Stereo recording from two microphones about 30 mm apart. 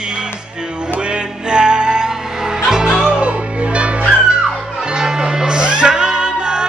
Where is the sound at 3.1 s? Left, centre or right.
Right.